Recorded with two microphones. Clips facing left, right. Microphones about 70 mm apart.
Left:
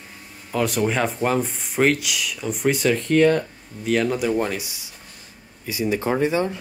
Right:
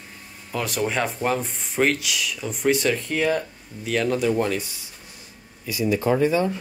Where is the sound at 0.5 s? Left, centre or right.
Centre.